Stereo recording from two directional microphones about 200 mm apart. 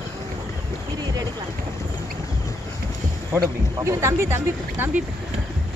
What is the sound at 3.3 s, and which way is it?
Speech, 15° right (ahead or behind).